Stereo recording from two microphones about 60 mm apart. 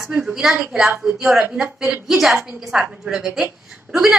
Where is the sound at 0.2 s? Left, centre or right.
Centre.